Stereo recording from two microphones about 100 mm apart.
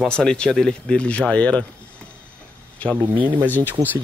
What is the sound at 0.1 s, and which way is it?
Speech, 10° left (ahead or behind).